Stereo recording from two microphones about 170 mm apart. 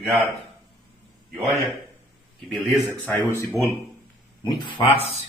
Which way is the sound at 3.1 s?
15° left (ahead or behind).